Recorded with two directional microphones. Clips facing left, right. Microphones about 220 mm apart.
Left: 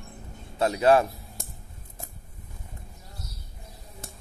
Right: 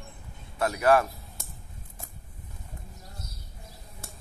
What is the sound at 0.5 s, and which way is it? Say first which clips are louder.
Speech: left 2 dB; 25° left (ahead or behind).